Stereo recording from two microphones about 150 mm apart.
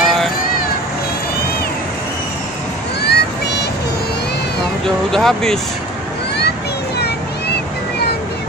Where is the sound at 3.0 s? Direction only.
90° left.